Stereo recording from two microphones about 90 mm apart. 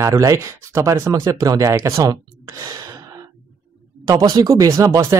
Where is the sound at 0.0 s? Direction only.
35° right (ahead or behind).